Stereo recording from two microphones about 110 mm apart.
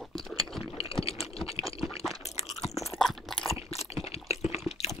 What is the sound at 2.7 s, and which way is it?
Chewing, 25° left (ahead or behind).